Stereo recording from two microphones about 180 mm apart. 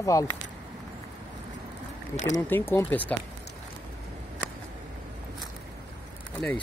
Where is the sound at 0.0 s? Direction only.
20° left (ahead or behind).